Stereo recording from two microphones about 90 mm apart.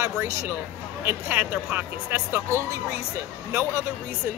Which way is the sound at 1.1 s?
25° right (ahead or behind).